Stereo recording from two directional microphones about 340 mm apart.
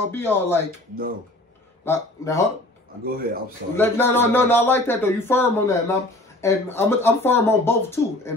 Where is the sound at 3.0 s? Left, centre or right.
Right.